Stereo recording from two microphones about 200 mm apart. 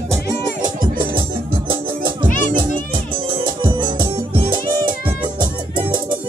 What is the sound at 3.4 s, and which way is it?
Music, 25° right (ahead or behind).